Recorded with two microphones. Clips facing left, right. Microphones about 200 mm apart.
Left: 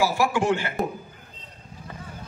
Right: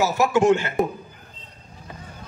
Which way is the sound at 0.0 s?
20° right (ahead or behind).